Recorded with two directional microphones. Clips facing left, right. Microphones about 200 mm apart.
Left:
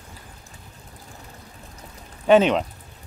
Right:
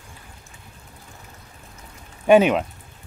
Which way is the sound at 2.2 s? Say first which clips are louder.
Right 1 dB; 10° right (ahead or behind).